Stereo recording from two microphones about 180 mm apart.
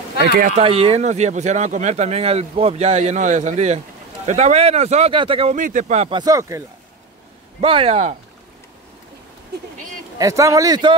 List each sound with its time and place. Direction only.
0.4 s speech: 40° right (ahead or behind)
5.6 s speech: 45° right (ahead or behind)
6.0 s speech: 25° right (ahead or behind)
7.6 s speech: 30° right (ahead or behind)
10.1 s speech: 15° right (ahead or behind)